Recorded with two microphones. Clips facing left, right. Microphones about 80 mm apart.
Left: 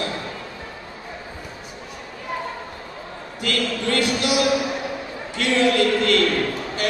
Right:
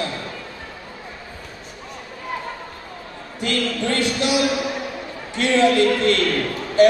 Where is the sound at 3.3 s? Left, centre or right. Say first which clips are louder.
Right 1 dB; right.